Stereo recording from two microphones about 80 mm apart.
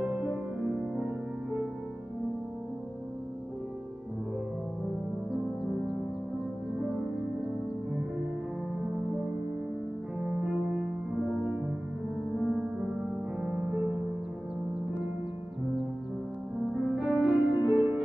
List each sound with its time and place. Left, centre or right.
0.0 s music: centre
6.8 s music: centre
10.1 s music: centre
16.7 s music: centre